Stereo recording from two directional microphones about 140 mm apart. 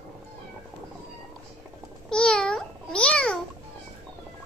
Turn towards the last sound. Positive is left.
turn(degrees=5)  # may be behind; listen again after turning